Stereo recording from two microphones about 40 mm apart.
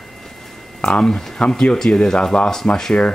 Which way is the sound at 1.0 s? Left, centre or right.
Centre.